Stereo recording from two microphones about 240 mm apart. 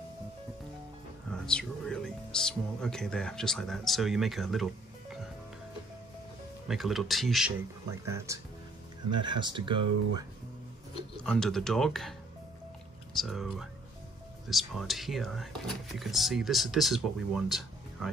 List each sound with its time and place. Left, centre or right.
1.3 s speech: centre
6.7 s speech: centre
9.1 s speech: centre
11.2 s speech: centre